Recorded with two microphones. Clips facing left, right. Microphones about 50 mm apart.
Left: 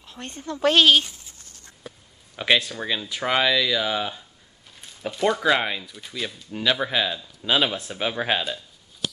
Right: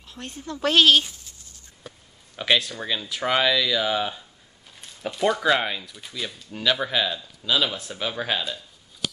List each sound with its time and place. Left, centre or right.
0.0 s speech: centre
7.4 s speech: left
7.9 s speech: centre